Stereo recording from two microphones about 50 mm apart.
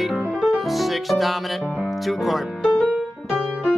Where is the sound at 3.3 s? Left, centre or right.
Centre.